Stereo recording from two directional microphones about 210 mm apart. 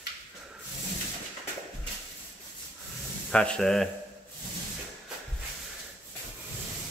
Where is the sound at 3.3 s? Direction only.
5° left (ahead or behind).